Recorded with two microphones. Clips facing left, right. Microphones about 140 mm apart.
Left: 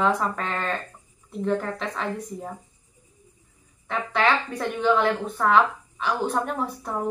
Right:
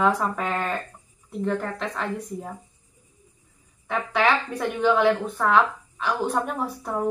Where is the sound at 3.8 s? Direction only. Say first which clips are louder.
Right 1 dB; 5° right (ahead or behind).